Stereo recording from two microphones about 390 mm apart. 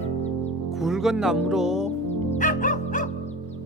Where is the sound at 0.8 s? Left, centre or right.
Centre.